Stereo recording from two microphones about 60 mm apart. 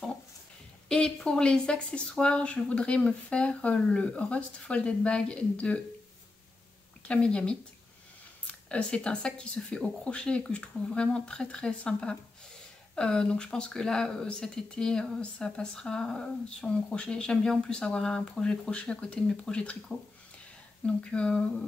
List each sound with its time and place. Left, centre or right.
0.8 s speech: centre
7.1 s speech: centre
20.8 s speech: centre